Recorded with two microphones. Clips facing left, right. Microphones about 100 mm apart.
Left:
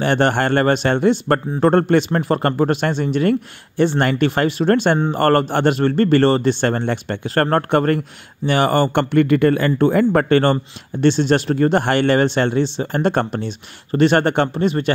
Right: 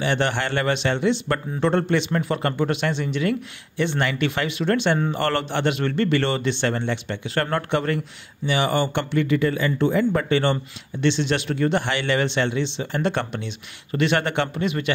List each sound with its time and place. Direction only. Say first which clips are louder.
0.0 s a man's voice: left 6 dB; 50° left (ahead or behind)